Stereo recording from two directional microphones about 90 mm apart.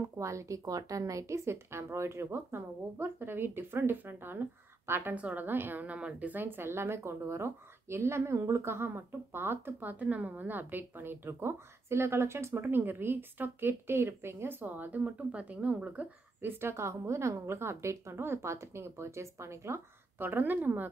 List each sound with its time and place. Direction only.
0.0 s a woman's voice: 35° right (ahead or behind); by 20.9 s 20° right (ahead or behind)